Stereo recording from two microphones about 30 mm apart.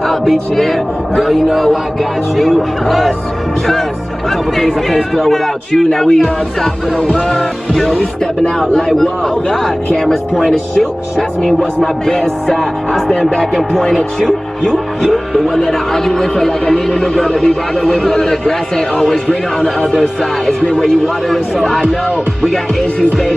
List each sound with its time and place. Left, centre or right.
0.3 s a man's voice: centre
1.5 s music: centre
4.6 s speech: centre
5.9 s speech: centre
7.0 s music: left
7.7 s speech: centre
8.5 s speech: left
10.8 s speech: centre
15.3 s speech: centre
19.2 s speech: left